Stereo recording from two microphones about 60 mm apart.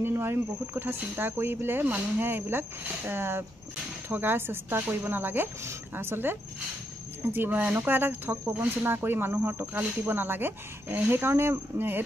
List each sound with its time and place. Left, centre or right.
0.0 s speech: right
7.3 s speech: right